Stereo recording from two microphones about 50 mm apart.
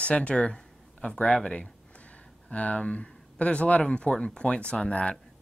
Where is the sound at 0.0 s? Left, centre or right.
Left.